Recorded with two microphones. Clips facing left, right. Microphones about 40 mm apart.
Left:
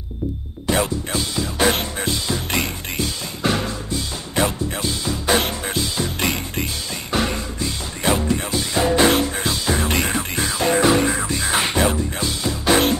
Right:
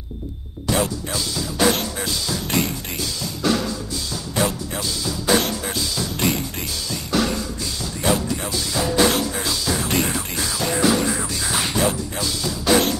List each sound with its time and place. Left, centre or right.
0.7 s music: left